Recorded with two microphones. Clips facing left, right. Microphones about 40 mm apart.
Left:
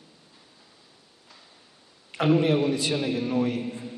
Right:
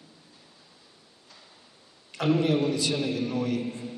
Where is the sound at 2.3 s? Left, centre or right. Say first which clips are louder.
Left 2 dB; centre.